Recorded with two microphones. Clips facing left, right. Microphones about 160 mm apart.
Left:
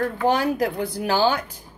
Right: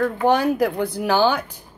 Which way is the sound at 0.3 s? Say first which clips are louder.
Right 3 dB; 60° right (ahead or behind).